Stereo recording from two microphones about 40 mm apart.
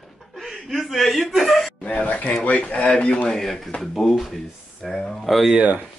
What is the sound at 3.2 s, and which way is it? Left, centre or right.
Speech, centre.